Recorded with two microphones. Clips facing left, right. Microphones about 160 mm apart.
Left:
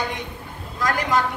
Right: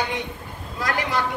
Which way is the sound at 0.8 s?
45° left (ahead or behind).